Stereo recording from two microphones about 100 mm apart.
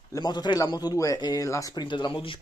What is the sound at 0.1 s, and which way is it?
Speech, 45° left (ahead or behind).